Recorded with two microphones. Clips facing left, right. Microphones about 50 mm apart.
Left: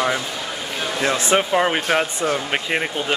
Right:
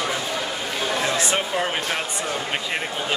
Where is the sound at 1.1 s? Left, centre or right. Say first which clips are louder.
Left 5 dB; left.